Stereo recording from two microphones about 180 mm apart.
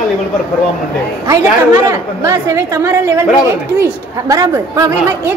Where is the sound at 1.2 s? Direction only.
15° right (ahead or behind).